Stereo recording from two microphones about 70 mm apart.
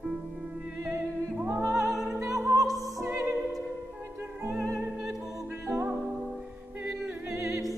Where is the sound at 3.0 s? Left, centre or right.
Right.